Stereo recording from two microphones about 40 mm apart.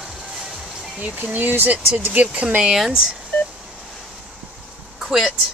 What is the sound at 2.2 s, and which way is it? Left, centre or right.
Speech, right.